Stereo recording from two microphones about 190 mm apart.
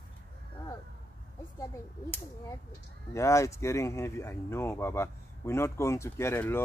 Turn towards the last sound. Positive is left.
turn(degrees=10)  # may be behind; listen again after turning